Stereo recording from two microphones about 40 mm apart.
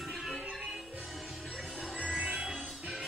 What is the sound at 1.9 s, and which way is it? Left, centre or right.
Music, right.